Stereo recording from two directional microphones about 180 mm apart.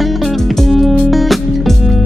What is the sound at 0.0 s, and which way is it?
Music, centre (ahead or behind).